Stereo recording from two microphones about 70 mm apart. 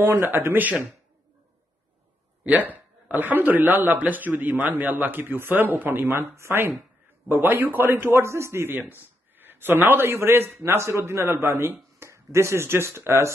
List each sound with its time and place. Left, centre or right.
0.1 s a man's voice: right
2.7 s a man's voice: right